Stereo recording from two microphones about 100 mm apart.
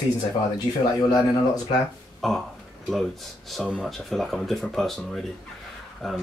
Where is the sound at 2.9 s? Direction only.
5° left (ahead or behind).